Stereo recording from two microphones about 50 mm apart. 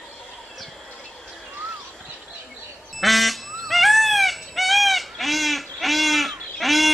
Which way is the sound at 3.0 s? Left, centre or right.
Centre.